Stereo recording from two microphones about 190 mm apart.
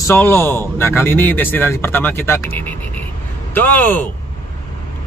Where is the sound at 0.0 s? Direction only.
10° left (ahead or behind).